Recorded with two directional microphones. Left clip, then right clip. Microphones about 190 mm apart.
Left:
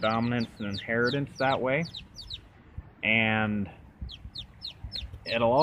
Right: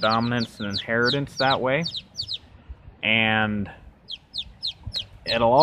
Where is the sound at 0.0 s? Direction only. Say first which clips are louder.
Right 6 dB; 20° right (ahead or behind).